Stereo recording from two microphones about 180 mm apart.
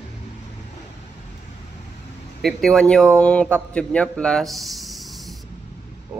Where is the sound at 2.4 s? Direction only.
Centre (ahead or behind).